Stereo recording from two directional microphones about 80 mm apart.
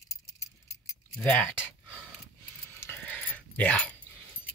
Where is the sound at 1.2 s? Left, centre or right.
Centre.